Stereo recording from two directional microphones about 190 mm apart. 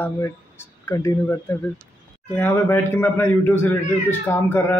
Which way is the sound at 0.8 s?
15° left (ahead or behind).